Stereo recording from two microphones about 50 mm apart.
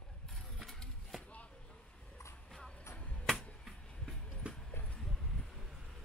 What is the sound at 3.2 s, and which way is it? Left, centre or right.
Finger snapping, centre.